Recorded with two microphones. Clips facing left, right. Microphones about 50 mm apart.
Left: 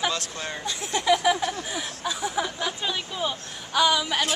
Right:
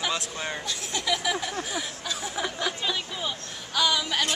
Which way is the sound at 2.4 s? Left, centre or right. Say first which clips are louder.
Left 2 dB; centre.